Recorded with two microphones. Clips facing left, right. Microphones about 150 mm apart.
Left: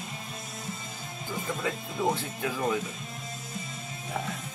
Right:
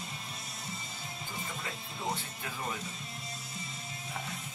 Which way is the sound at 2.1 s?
90° left.